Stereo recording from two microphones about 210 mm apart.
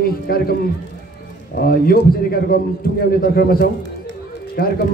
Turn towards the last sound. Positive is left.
turn(degrees=45)  # may be behind; listen again after turning